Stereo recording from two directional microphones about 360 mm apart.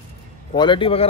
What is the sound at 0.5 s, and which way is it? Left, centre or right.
Speech, centre.